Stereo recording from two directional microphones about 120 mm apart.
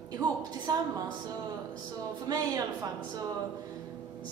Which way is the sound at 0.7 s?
30° right (ahead or behind).